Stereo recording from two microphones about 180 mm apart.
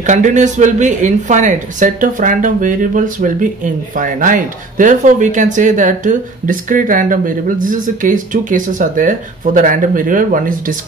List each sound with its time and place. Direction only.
0.0 s speech: 45° right (ahead or behind)